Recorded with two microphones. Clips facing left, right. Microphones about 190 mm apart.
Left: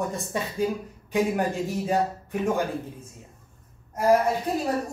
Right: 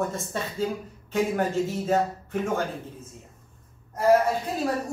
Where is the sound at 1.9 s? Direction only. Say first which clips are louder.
Even; 15° left (ahead or behind).